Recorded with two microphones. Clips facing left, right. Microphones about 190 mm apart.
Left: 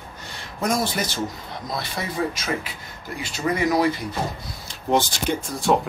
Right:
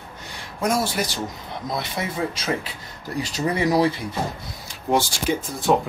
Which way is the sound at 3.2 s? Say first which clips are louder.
Even; 35° right (ahead or behind).